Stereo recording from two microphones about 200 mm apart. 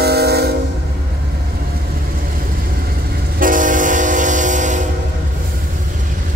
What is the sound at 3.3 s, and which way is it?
Train, 40° right (ahead or behind).